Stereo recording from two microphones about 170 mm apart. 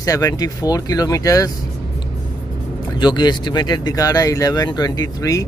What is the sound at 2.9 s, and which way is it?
Speech, 25° left (ahead or behind).